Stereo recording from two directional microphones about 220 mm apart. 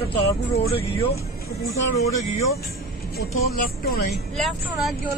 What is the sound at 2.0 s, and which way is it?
Speech, 15° left (ahead or behind).